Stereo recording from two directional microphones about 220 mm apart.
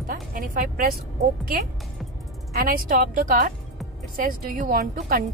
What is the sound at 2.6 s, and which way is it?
Speech, 40° right (ahead or behind).